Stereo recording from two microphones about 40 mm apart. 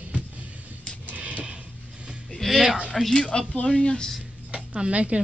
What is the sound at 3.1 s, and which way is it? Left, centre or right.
Speech, left.